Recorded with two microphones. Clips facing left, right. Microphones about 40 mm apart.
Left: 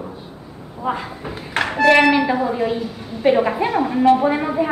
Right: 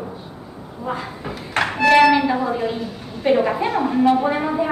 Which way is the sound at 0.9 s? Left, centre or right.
Left.